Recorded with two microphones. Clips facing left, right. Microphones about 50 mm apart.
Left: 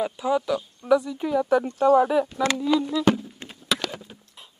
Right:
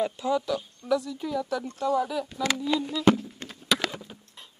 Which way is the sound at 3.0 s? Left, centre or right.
Centre.